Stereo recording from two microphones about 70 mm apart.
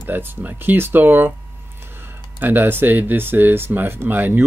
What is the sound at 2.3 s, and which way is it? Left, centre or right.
Speech, right.